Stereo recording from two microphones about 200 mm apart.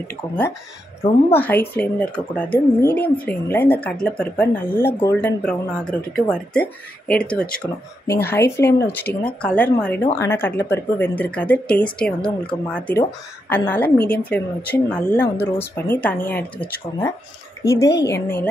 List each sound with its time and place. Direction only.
1.3 s speech: 10° left (ahead or behind)
17.6 s speech: 15° left (ahead or behind)